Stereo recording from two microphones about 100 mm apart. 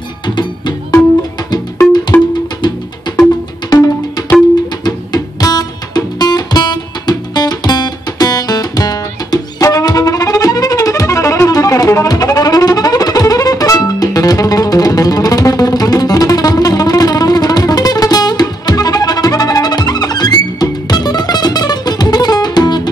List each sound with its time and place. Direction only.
0.3 s speech: 50° left (ahead or behind)
2.1 s music: 20° left (ahead or behind)
2.6 s music: 50° left (ahead or behind)
4.8 s music: 40° left (ahead or behind)